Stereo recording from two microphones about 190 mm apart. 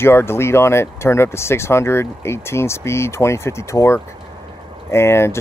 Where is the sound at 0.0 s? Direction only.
15° left (ahead or behind).